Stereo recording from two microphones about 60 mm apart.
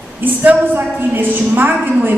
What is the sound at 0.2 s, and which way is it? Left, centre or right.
A woman's voice, right.